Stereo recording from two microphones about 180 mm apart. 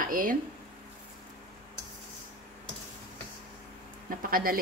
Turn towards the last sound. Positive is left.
turn(degrees=-55)  # may be behind; listen again after turning